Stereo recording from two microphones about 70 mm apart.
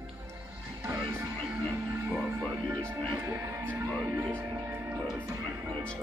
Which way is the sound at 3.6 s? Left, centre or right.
Right.